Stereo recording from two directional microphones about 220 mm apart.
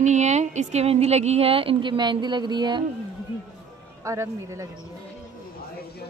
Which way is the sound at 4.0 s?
15° right (ahead or behind).